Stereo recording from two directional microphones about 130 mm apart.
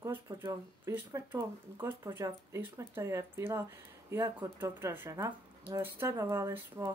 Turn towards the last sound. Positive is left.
turn(degrees=-20)  # may be behind; listen again after turning